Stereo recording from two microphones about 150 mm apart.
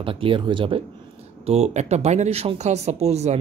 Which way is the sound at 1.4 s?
45° right (ahead or behind).